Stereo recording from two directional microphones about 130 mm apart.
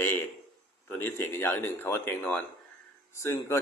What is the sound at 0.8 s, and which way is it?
Speech, 15° left (ahead or behind).